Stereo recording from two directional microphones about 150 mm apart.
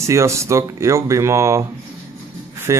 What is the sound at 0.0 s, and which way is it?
Speech, 20° right (ahead or behind).